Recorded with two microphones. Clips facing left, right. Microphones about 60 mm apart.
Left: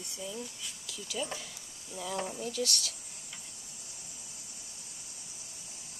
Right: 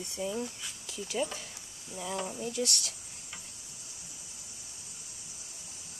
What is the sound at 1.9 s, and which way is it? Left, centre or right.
Speech, centre.